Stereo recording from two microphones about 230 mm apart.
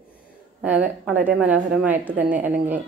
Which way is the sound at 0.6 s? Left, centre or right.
Centre.